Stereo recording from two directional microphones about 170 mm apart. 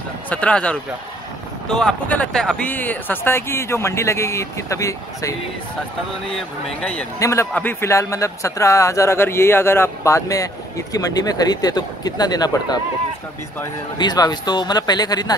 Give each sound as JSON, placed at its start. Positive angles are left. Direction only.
{"t": 0.3, "sound": "speech", "side_deg": 5}
{"t": 6.3, "sound": "speech", "side_deg": 5}
{"t": 7.2, "sound": "speech", "side_deg": 15}
{"t": 13.9, "sound": "speech", "side_deg": 25}